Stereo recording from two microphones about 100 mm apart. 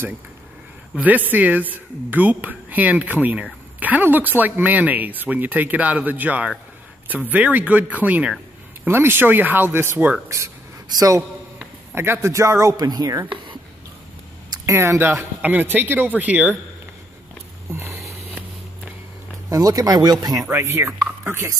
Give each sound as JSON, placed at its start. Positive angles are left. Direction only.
{"t": 0.9, "sound": "speech", "side_deg": -15}
{"t": 11.9, "sound": "speech", "side_deg": -25}
{"t": 12.7, "sound": "speech", "side_deg": -40}
{"t": 14.7, "sound": "speech", "side_deg": -25}
{"t": 17.6, "sound": "sniff", "side_deg": -25}
{"t": 19.5, "sound": "speech", "side_deg": -35}
{"t": 20.4, "sound": "speech", "side_deg": -25}